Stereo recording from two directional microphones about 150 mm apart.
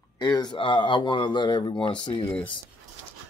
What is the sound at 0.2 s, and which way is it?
Speech, 30° left (ahead or behind).